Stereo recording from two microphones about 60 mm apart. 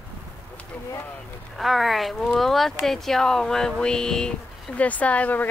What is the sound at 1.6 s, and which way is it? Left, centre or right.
Speech, centre.